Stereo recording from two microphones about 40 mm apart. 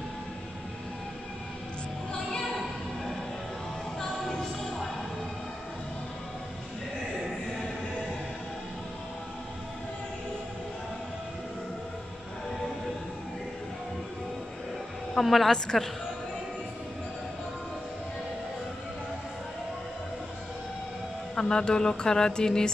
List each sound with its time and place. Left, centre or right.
4.3 s music: centre
15.1 s a woman's voice: centre
15.5 s speech: centre
21.4 s speech: centre